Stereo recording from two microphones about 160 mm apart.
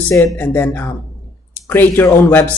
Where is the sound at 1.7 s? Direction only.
15° left (ahead or behind).